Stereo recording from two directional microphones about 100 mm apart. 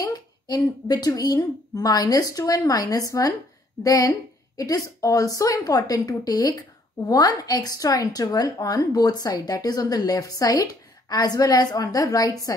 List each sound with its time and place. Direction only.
0.0 s a woman's voice: 40° left (ahead or behind)